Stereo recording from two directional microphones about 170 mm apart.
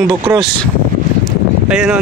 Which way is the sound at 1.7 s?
5° right (ahead or behind).